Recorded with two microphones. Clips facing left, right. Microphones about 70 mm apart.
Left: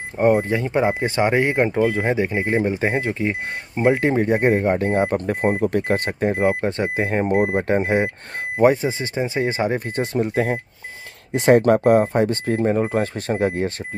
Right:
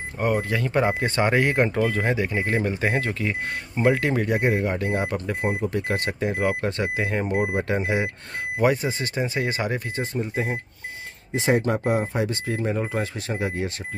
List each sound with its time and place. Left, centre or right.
0.2 s speech: left
6.3 s speech: left
10.1 s speech: left
11.3 s speech: left